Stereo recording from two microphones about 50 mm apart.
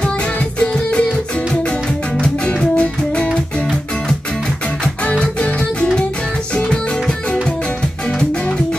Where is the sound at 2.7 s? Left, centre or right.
Left.